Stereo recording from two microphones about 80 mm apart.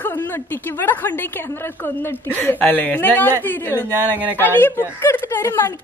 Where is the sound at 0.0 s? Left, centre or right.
Left.